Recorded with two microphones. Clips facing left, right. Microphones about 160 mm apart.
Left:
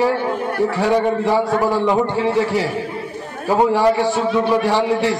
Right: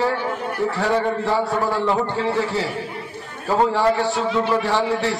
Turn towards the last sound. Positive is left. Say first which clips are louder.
# left 4 dB
turn(degrees=15)  # may be behind; listen again after turning